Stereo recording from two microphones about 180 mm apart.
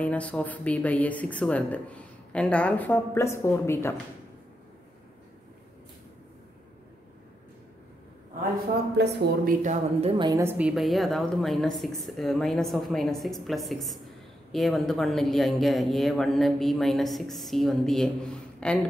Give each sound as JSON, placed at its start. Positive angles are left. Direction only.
{"t": 0.0, "sound": "a woman's voice", "side_deg": 5}
{"t": 9.0, "sound": "speech", "side_deg": -70}
{"t": 9.6, "sound": "a woman's voice", "side_deg": -40}
{"t": 10.4, "sound": "speech", "side_deg": -5}